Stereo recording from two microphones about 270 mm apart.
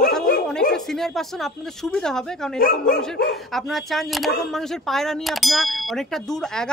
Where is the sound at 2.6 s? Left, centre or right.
Left.